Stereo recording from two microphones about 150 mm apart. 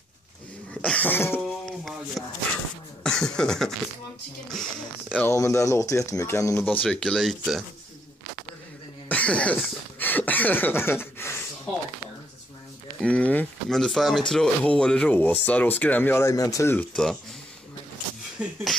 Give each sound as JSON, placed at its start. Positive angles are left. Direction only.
{"t": 0.8, "sound": "cough", "side_deg": 10}
{"t": 2.2, "sound": "speech", "side_deg": -5}
{"t": 5.1, "sound": "speech", "side_deg": 15}
{"t": 6.6, "sound": "speech", "side_deg": 10}
{"t": 9.1, "sound": "speech", "side_deg": 10}
{"t": 13.0, "sound": "speech", "side_deg": 10}
{"t": 16.9, "sound": "speech", "side_deg": 0}
{"t": 18.4, "sound": "speech", "side_deg": 0}